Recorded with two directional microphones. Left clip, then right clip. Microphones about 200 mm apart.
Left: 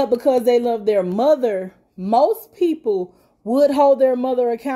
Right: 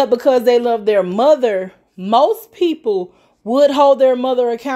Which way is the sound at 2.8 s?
25° right (ahead or behind).